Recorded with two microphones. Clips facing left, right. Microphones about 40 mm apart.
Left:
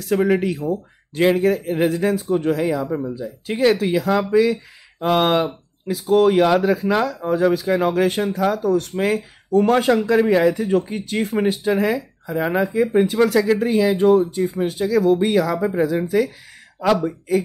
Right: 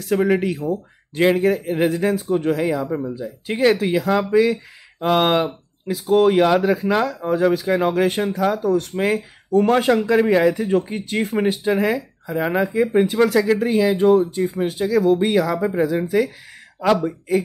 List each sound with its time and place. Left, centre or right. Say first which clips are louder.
0.0 s speech: even; centre
3.2 s speech: even; right
12.7 s speech: even; right